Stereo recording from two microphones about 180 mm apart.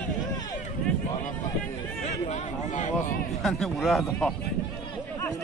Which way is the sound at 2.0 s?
40° left (ahead or behind).